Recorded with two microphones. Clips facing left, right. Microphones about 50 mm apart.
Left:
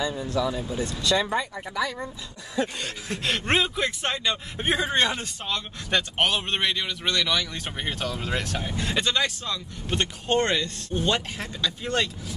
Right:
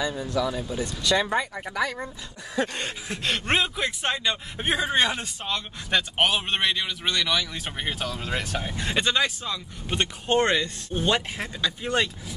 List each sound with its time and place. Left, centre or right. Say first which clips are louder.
0.4 s speech: even; centre
0.8 s speech: right 1 dB; centre
2.6 s a sound: right 1 dB; right
3.1 s speech: left 1 dB; centre
8.8 s speech: right 1 dB; centre